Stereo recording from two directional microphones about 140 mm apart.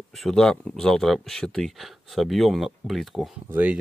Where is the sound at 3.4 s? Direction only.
15° right (ahead or behind).